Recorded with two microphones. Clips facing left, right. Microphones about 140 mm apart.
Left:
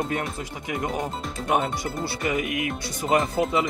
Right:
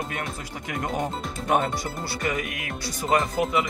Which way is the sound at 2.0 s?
20° left (ahead or behind).